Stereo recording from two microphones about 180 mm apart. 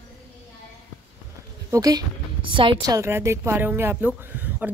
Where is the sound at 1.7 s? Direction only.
20° right (ahead or behind).